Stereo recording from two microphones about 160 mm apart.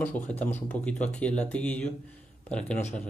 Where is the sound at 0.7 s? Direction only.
10° left (ahead or behind).